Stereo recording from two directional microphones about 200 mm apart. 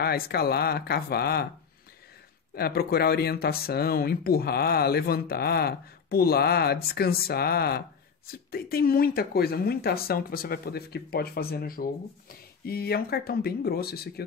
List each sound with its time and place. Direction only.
0.0 s speech: 50° left (ahead or behind)
2.5 s speech: 50° left (ahead or behind)